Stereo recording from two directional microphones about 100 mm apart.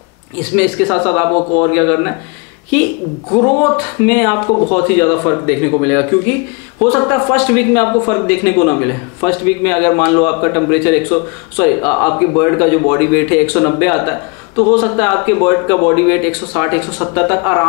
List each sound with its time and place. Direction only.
0.6 s a man's voice: 15° left (ahead or behind)
3.3 s a man's voice: 25° left (ahead or behind)